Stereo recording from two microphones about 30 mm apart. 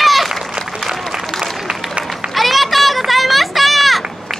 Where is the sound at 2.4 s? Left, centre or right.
Centre.